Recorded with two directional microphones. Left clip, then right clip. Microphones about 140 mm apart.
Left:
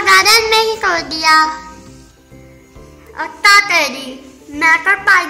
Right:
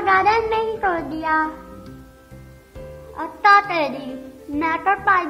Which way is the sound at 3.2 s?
50° right (ahead or behind).